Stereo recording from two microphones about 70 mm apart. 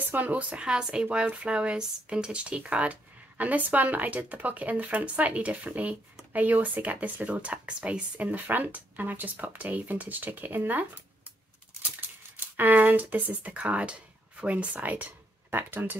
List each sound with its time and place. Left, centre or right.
0.1 s speech: right
12.5 s speech: right